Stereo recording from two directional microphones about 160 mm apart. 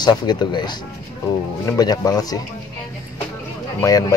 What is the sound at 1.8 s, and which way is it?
Speech, 25° left (ahead or behind).